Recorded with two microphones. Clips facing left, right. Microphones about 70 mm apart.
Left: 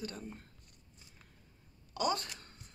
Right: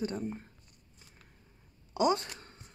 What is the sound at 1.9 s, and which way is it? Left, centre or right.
Speech, right.